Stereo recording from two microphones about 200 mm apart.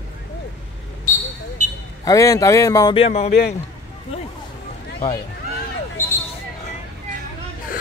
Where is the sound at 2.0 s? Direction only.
15° left (ahead or behind); by 3.3 s 35° left (ahead or behind).